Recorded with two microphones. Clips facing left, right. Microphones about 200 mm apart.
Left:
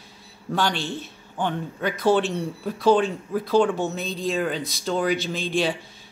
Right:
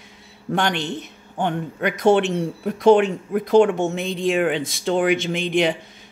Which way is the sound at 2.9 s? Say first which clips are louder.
Right 5 dB; 70° right (ahead or behind).